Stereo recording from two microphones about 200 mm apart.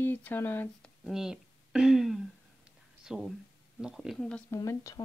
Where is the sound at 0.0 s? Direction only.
10° left (ahead or behind).